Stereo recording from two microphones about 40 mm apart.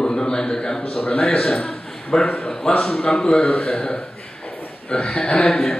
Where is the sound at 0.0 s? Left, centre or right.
Centre.